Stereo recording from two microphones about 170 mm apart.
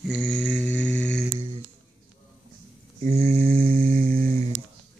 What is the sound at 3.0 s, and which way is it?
Mantra, 65° right (ahead or behind).